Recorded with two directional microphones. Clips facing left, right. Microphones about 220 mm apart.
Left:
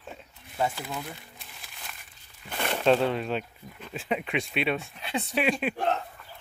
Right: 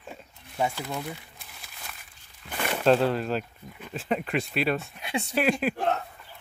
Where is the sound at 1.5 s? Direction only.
Centre (ahead or behind).